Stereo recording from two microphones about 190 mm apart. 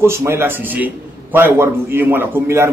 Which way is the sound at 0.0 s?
15° right (ahead or behind).